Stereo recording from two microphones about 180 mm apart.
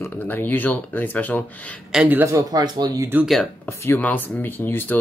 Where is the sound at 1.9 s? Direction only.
10° right (ahead or behind).